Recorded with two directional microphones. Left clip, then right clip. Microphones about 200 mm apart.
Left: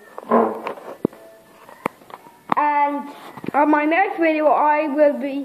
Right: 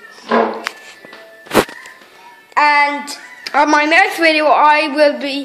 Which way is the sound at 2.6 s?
10° right (ahead or behind).